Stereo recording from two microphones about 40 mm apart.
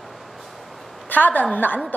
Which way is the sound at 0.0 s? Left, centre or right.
Centre.